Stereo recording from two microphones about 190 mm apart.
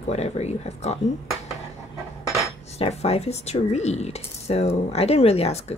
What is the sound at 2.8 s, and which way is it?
Speech, 35° left (ahead or behind).